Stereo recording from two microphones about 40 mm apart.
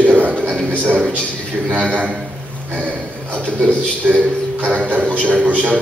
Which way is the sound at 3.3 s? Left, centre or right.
Right.